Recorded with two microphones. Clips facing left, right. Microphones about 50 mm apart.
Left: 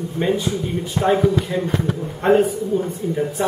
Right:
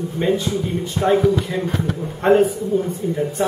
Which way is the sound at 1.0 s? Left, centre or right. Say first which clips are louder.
Even; centre.